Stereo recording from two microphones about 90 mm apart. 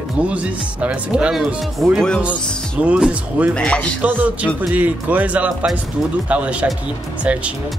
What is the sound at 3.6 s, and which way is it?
Music, 10° left (ahead or behind).